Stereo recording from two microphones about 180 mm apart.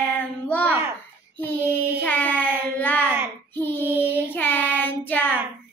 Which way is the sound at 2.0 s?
10° left (ahead or behind).